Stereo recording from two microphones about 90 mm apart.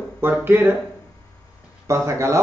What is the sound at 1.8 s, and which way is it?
Speech, 35° right (ahead or behind).